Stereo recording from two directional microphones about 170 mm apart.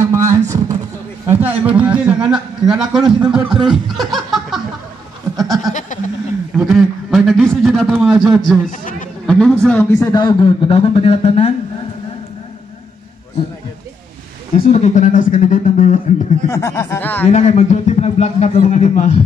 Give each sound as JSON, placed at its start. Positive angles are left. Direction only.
{"t": 0.0, "sound": "a sound", "side_deg": -15}
{"t": 1.2, "sound": "a man's voice", "side_deg": -10}
{"t": 3.9, "sound": "laughter", "side_deg": 0}
{"t": 5.3, "sound": "a sound", "side_deg": -20}
{"t": 5.7, "sound": "a sound", "side_deg": 45}
{"t": 6.6, "sound": "a man's voice", "side_deg": 0}
{"t": 14.7, "sound": "speech", "side_deg": 45}
{"t": 16.4, "sound": "speech", "side_deg": 20}
{"t": 17.3, "sound": "a man's voice", "side_deg": 40}